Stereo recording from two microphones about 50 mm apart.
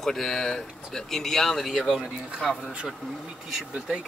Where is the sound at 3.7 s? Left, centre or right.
Right.